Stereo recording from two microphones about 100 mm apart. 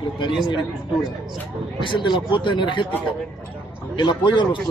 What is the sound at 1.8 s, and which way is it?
Speech, 55° left (ahead or behind).